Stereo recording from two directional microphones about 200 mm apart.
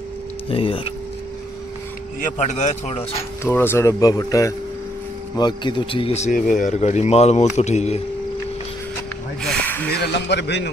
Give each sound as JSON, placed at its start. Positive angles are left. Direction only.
{"t": 0.5, "sound": "speech", "side_deg": 25}
{"t": 2.2, "sound": "speech", "side_deg": 35}
{"t": 3.4, "sound": "speech", "side_deg": 10}
{"t": 9.4, "sound": "snake", "side_deg": 5}
{"t": 9.9, "sound": "speech", "side_deg": 55}